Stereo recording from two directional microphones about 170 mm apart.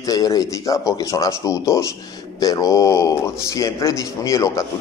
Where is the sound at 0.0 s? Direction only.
20° left (ahead or behind).